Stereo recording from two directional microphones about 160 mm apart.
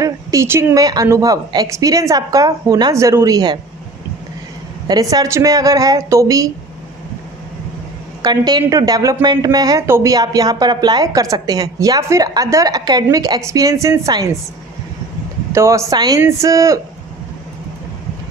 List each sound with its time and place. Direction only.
0.0 s a woman's voice: 20° right (ahead or behind)
4.8 s a woman's voice: 25° right (ahead or behind)
8.2 s a woman's voice: 25° right (ahead or behind)
15.5 s a woman's voice: 20° right (ahead or behind)